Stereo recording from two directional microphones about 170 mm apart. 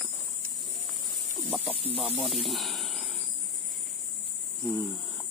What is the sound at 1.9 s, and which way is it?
Speech, 35° right (ahead or behind).